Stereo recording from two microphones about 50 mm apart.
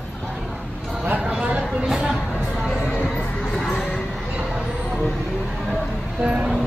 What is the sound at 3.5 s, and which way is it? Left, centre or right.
Music, centre.